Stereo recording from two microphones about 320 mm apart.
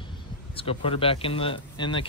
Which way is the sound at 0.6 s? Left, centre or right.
Centre.